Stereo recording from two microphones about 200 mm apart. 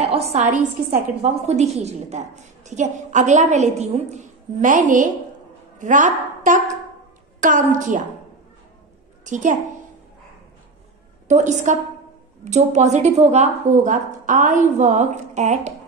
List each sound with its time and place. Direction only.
0.0 s a woman's voice: 30° right (ahead or behind)
9.2 s a woman's voice: 40° right (ahead or behind)
11.2 s a woman's voice: 35° right (ahead or behind)